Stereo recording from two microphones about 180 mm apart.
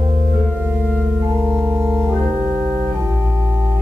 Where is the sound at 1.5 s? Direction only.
10° right (ahead or behind).